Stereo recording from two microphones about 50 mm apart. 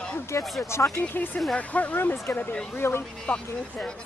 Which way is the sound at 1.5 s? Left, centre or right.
Left.